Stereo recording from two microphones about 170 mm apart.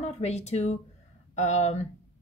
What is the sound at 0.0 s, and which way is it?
A woman's voice, 40° left (ahead or behind).